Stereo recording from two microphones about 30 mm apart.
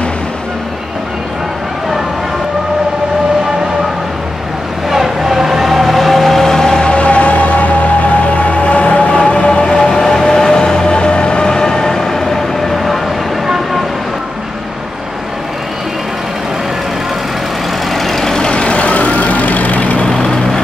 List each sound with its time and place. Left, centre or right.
4.8 s vehicle: centre
6.9 s emergency vehicle: left
8.5 s music: left
9.5 s vehicle: left
9.8 s vehicle: centre
10.9 s train: left; by 12.7 s centre
17.9 s vehicle: centre
18.4 s vehicle: left